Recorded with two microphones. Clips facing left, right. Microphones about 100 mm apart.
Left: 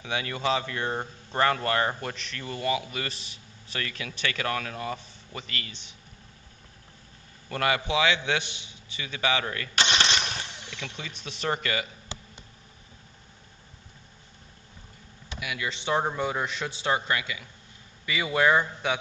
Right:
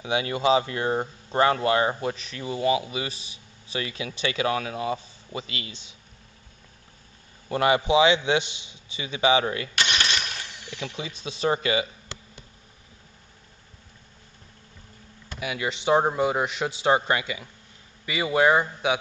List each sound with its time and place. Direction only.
0.0 s a man's voice: 15° right (ahead or behind)
7.4 s a man's voice: 20° right (ahead or behind)
9.8 s engine starting: 30° left (ahead or behind)
10.7 s a man's voice: 20° right (ahead or behind)
15.4 s a man's voice: 30° right (ahead or behind); by 16.6 s 15° right (ahead or behind)
16.6 s a man's voice: 25° right (ahead or behind)
18.0 s a man's voice: 10° right (ahead or behind)